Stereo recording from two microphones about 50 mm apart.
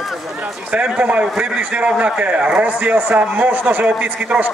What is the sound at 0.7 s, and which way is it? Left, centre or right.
A man's voice, right.